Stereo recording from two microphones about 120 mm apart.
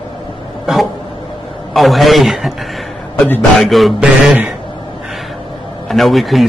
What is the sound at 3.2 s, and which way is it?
Speech, 15° left (ahead or behind).